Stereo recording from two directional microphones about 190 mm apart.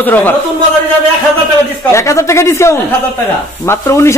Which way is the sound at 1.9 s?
15° left (ahead or behind).